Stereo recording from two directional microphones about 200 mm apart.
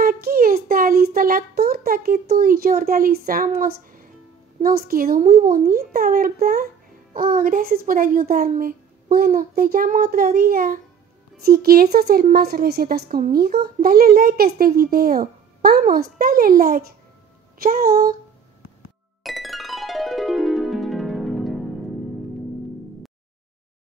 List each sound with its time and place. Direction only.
0.0 s a child's voice: 45° right (ahead or behind)
19.2 s music: centre (ahead or behind)